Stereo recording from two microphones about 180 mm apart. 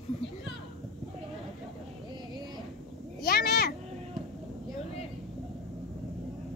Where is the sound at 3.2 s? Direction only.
60° left (ahead or behind).